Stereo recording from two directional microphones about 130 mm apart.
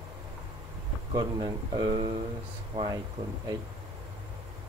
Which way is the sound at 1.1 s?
35° right (ahead or behind).